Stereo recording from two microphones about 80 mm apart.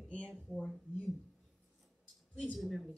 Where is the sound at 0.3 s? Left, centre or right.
Centre.